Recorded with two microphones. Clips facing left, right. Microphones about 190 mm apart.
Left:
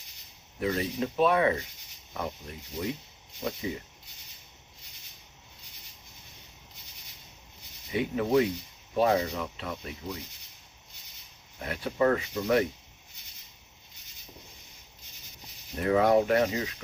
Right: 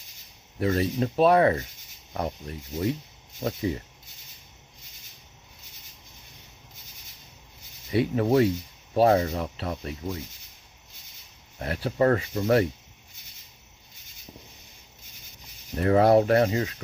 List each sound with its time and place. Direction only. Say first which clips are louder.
0.6 s speech: right 4 dB; 40° right (ahead or behind)
2.8 s speech: right 6 dB; 40° right (ahead or behind)
7.9 s speech: right 3 dB; 40° right (ahead or behind)
11.6 s speech: right 3 dB; 35° right (ahead or behind)
15.8 s speech: right 4 dB; 40° right (ahead or behind)